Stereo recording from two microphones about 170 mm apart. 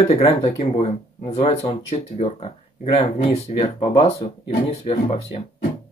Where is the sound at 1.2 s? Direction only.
35° left (ahead or behind).